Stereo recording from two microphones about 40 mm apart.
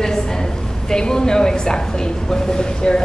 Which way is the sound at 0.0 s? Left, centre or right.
Centre.